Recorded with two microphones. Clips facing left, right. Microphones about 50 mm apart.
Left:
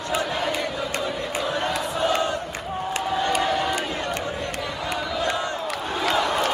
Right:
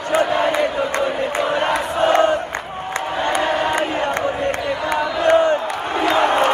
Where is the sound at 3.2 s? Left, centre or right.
Right.